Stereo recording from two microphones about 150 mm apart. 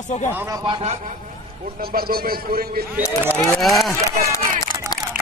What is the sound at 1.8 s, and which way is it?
A man's voice, 85° right.